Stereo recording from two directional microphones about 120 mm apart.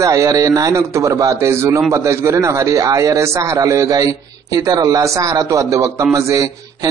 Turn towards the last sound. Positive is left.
turn(degrees=-30)  # may be behind; listen again after turning